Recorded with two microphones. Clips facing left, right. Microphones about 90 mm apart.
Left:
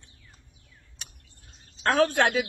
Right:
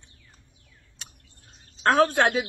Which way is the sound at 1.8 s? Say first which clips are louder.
Right 2 dB; 40° right (ahead or behind).